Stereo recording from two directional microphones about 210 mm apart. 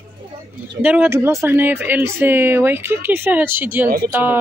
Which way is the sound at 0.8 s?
5° right (ahead or behind).